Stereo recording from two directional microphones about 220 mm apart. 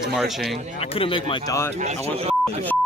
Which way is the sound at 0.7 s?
25° left (ahead or behind).